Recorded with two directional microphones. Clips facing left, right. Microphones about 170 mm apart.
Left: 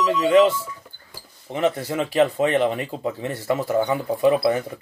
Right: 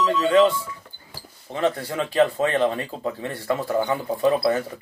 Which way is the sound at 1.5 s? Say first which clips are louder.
Left 2 dB; 20° left (ahead or behind).